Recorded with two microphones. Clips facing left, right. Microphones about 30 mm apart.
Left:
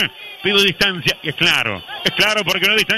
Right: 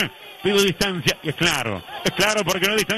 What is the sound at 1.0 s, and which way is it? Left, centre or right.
A man's voice, left.